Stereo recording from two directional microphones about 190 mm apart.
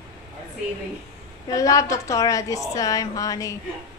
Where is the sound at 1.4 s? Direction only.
20° left (ahead or behind).